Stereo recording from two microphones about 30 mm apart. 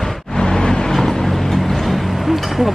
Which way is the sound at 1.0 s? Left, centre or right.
Centre.